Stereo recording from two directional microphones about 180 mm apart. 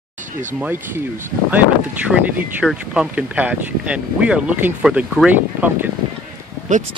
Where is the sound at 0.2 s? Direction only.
45° right (ahead or behind).